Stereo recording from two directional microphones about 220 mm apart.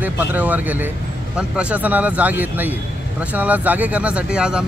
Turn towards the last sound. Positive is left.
turn(degrees=-5)  # may be behind; listen again after turning